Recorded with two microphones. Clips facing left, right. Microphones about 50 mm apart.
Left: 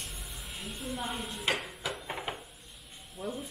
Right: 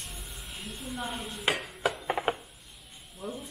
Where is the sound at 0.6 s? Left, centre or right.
Centre.